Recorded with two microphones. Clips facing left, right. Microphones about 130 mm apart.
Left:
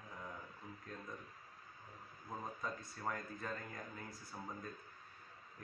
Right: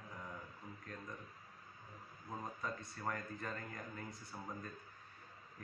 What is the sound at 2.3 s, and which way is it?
A man's voice, centre (ahead or behind).